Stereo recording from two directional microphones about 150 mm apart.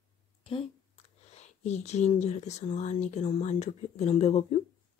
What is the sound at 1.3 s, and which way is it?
Speech, 50° left (ahead or behind).